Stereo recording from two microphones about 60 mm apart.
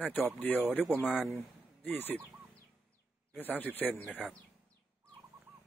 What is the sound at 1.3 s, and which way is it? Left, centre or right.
Speech, left.